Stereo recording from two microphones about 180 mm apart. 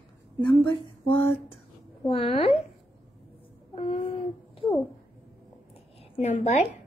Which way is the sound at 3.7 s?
30° left (ahead or behind).